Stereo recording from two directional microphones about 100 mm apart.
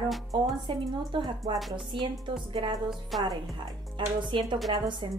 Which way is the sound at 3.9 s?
55° right (ahead or behind).